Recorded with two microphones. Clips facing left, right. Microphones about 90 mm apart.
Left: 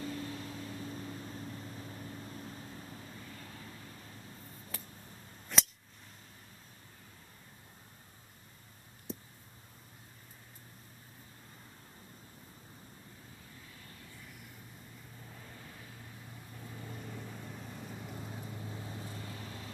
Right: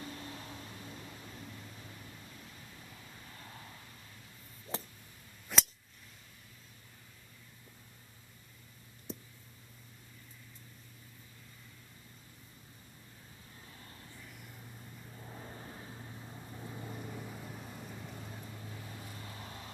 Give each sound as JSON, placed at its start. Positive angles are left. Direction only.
{"t": 0.2, "sound": "vehicle", "side_deg": -30}
{"t": 0.7, "sound": "vehicle", "side_deg": 35}
{"t": 3.3, "sound": "vehicle", "side_deg": -35}
{"t": 4.7, "sound": "a sound", "side_deg": -25}
{"t": 5.5, "sound": "a sound", "side_deg": -5}
{"t": 9.1, "sound": "a sound", "side_deg": 0}
{"t": 13.7, "sound": "vehicle", "side_deg": -30}
{"t": 15.1, "sound": "vehicle", "side_deg": -30}
{"t": 19.2, "sound": "vehicle", "side_deg": -30}